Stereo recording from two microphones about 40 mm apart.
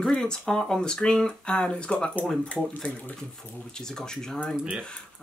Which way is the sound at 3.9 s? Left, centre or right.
Centre.